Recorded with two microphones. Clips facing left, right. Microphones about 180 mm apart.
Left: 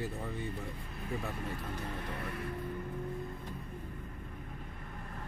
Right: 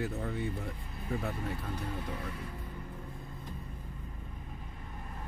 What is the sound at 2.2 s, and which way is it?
Speech, 60° left (ahead or behind).